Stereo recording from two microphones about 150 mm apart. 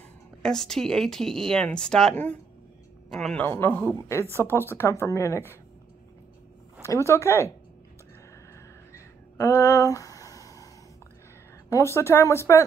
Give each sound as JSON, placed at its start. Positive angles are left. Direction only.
{"t": 0.4, "sound": "a man's voice", "side_deg": 5}
{"t": 3.4, "sound": "a woman's voice", "side_deg": 15}
{"t": 6.8, "sound": "a woman's voice", "side_deg": 20}
{"t": 8.9, "sound": "a sound", "side_deg": 20}
{"t": 11.7, "sound": "a woman's voice", "side_deg": 20}